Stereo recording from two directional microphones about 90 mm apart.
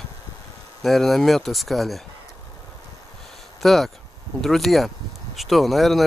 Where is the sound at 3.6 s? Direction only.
Centre (ahead or behind).